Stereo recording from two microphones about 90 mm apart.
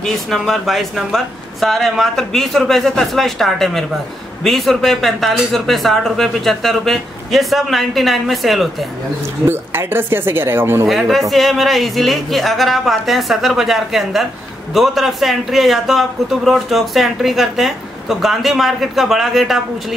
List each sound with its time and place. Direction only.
0.0 s a man's voice: centre (ahead or behind)
9.5 s speech: 25° right (ahead or behind)
10.9 s a man's voice: centre (ahead or behind)